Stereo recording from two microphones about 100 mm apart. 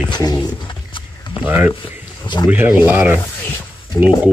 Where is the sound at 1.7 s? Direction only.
55° left (ahead or behind).